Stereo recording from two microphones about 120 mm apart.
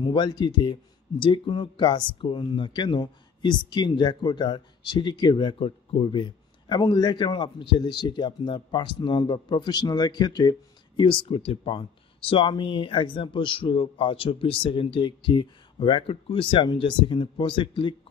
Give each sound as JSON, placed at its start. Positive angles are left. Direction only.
{"t": 0.0, "sound": "speech", "side_deg": 40}
{"t": 11.0, "sound": "speech", "side_deg": 45}